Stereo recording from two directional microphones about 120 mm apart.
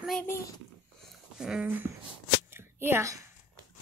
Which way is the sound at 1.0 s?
Centre (ahead or behind).